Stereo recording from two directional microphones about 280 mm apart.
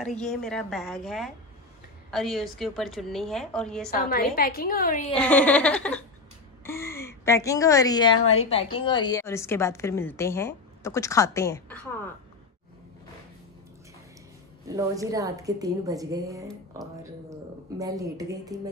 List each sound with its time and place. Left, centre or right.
0.0 s a woman's voice: centre
3.9 s a woman's voice: left
5.1 s a woman's voice: centre
14.8 s a woman's voice: centre
17.7 s a woman's voice: centre